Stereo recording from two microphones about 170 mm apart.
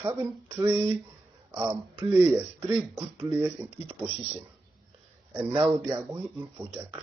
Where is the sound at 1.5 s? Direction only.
10° right (ahead or behind).